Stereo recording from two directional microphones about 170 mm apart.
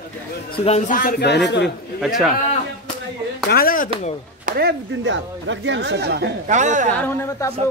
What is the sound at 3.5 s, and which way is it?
Speech, 60° left (ahead or behind).